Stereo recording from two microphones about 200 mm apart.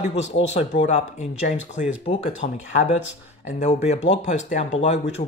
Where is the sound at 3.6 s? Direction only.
35° left (ahead or behind).